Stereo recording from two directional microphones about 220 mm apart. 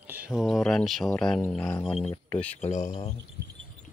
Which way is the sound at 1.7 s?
25° left (ahead or behind).